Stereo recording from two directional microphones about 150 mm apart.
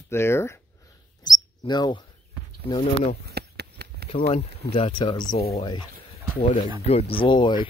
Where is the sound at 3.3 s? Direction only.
90° right.